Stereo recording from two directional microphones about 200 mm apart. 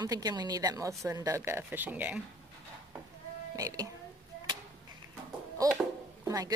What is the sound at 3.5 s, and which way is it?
Speech, 15° right (ahead or behind).